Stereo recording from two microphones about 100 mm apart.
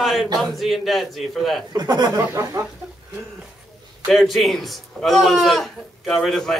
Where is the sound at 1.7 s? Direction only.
45° right (ahead or behind).